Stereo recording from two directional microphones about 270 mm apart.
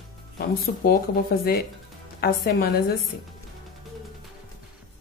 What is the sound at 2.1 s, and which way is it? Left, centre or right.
Speech, left.